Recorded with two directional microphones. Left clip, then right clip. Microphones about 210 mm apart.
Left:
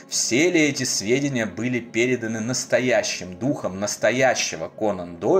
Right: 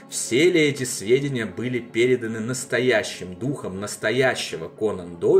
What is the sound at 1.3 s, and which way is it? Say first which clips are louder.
Speech: left 2 dB; 10° left (ahead or behind).